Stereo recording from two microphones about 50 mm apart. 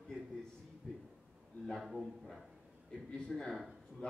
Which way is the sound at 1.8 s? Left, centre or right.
Centre.